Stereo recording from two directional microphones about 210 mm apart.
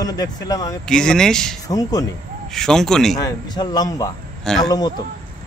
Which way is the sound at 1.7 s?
15° left (ahead or behind).